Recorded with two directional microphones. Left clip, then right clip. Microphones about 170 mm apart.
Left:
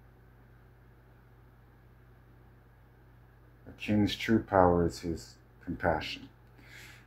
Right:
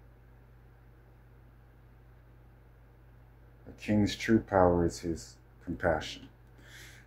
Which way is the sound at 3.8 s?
20° right (ahead or behind).